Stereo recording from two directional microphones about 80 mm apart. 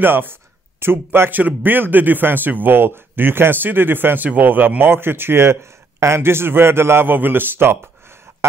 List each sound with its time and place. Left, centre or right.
0.0 s speech: right